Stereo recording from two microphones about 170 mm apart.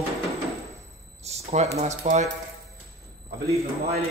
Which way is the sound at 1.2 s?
40° right (ahead or behind).